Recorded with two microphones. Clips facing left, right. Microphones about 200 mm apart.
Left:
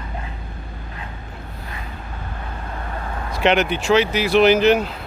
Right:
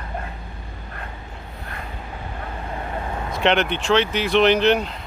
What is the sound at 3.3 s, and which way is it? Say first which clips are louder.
Speech: left 2 dB; 5° left (ahead or behind).